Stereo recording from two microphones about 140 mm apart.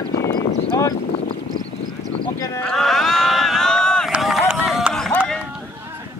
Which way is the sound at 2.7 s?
Centre (ahead or behind).